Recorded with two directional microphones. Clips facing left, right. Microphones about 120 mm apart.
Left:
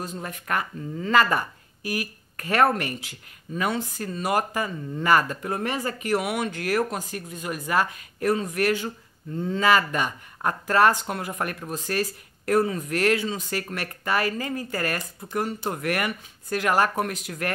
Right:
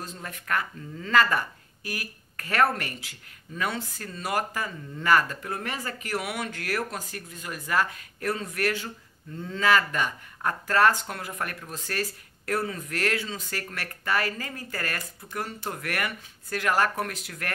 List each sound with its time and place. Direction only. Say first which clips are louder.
0.0 s speech: left 5 dB; 20° left (ahead or behind)